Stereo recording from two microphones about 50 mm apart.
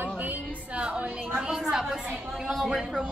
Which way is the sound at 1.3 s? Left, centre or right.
Centre.